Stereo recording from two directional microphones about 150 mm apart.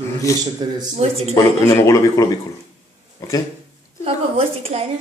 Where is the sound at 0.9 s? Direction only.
45° right (ahead or behind).